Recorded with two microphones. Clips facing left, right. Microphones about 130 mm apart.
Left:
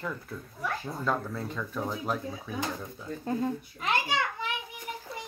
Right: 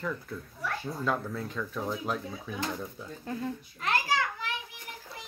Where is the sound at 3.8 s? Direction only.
20° left (ahead or behind).